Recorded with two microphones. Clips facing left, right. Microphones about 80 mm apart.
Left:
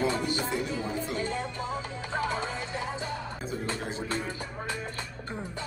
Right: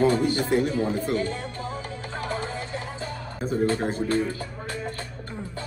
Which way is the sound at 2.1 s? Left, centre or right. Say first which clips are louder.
Even; left.